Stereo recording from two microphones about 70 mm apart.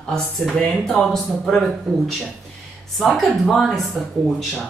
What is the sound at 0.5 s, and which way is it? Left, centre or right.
Speech, centre.